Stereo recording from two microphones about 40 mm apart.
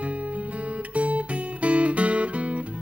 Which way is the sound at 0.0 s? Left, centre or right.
Right.